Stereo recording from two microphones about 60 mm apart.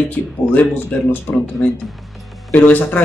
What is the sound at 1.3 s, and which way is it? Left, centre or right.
Speech, centre.